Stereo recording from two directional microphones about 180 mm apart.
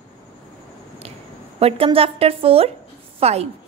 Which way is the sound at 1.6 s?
30° right (ahead or behind).